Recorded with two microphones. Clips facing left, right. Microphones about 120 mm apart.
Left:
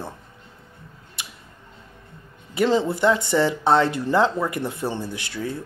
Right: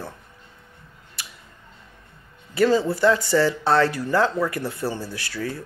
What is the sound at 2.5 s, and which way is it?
Speech, 20° left (ahead or behind).